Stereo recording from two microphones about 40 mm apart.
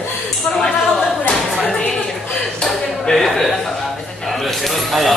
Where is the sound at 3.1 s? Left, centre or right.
Centre.